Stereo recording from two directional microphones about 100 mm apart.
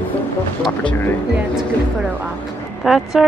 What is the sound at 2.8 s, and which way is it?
Speech, 5° right (ahead or behind).